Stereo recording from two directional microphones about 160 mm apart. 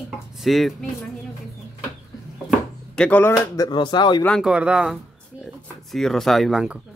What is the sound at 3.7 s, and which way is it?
Speech, 30° left (ahead or behind).